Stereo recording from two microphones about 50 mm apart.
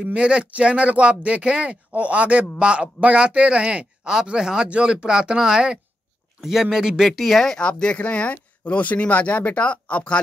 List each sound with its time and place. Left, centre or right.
0.0 s speech: right; by 7.5 s centre
7.5 s speech: left